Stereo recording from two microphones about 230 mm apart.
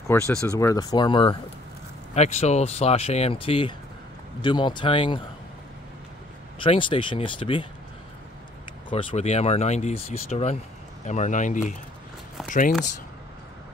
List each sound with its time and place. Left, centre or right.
0.1 s speech: centre
6.6 s speech: left
8.9 s speech: left